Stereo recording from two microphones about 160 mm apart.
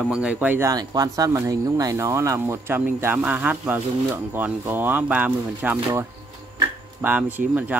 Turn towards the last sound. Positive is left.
turn(degrees=-10)  # may be behind; listen again after turning